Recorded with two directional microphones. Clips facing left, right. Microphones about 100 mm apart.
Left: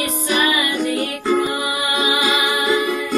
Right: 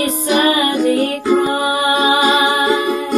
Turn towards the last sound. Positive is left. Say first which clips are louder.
# right 3 dB
turn(degrees=-35)  # may be behind; listen again after turning